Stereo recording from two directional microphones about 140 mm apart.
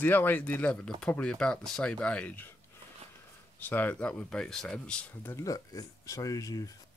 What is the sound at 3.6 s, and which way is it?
Speech, 15° left (ahead or behind).